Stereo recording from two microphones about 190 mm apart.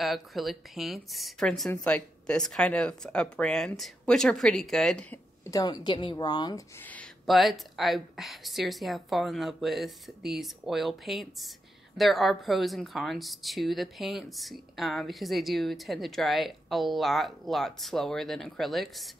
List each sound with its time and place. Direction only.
0.0 s speech: centre (ahead or behind)
5.4 s a woman's voice: 20° left (ahead or behind)
6.8 s speech: 5° left (ahead or behind)